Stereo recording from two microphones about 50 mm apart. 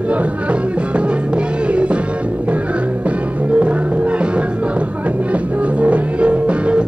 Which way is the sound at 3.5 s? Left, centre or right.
Right.